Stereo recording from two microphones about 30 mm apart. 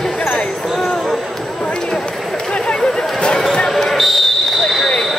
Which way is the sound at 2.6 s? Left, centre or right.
Left.